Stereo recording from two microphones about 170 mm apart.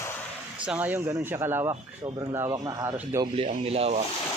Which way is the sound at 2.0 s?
25° right (ahead or behind).